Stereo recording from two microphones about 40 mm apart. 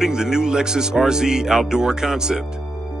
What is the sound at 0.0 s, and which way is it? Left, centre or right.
Speech, centre.